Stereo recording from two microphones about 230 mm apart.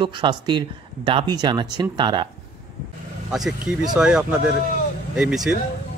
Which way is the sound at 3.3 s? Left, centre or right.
Centre.